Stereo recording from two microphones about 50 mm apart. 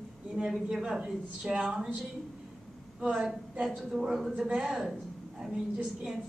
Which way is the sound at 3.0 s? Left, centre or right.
Right.